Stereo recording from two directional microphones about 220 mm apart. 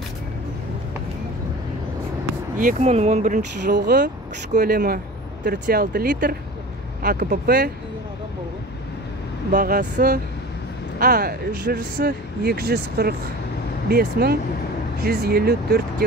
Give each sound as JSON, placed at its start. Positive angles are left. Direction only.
{"t": 2.5, "sound": "speech", "side_deg": -35}
{"t": 3.7, "sound": "speech", "side_deg": -50}
{"t": 9.5, "sound": "speech", "side_deg": -35}